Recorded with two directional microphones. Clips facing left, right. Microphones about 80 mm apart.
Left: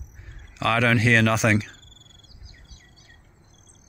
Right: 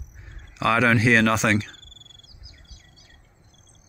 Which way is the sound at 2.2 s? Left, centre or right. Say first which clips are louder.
Left 1 dB; left.